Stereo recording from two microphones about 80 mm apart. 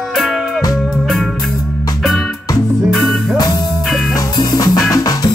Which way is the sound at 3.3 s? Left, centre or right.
Left.